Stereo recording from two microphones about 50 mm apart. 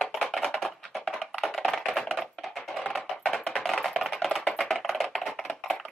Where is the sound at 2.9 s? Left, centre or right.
Centre.